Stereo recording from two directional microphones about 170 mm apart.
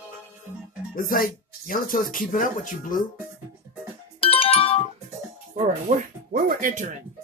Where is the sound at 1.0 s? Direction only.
55° left (ahead or behind).